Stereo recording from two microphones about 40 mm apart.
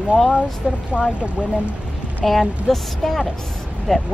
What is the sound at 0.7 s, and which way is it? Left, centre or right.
Speech, centre.